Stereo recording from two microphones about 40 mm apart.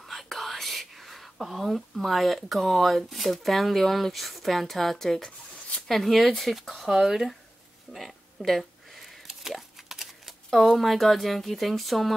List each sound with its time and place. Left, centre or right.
0.0 s speech: centre
6.9 s speech: centre
7.9 s a sound: centre
10.5 s speech: centre